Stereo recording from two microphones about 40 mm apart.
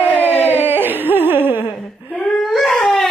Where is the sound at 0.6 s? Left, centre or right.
Right.